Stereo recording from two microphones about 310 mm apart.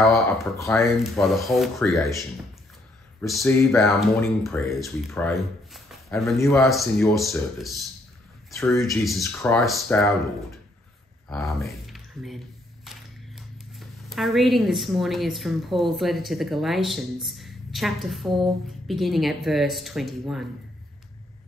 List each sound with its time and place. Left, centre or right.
0.0 s speech: centre
11.2 s speech: centre
13.7 s speech: centre